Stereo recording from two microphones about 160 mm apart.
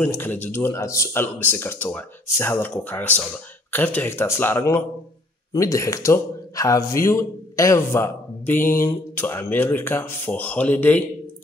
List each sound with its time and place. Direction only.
0.0 s speech: 15° left (ahead or behind)